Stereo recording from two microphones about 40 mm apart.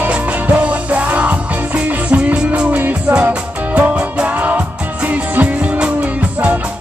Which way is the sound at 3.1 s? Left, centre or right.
Right.